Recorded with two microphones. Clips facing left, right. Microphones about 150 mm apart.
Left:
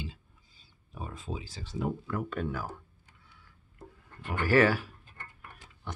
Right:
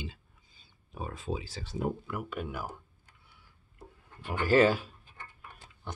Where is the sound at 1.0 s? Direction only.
70° right (ahead or behind).